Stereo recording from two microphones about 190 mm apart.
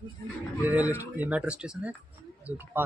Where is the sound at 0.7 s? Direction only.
10° right (ahead or behind).